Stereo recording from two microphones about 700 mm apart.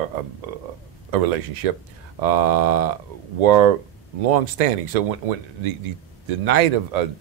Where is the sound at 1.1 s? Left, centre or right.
Right.